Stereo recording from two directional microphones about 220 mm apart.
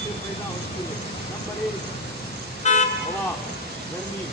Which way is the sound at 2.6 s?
30° left (ahead or behind).